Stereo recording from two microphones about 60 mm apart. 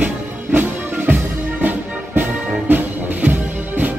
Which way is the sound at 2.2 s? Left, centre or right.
Right.